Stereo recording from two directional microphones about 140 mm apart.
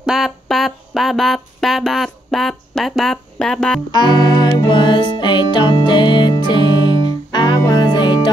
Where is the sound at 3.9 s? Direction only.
30° left (ahead or behind).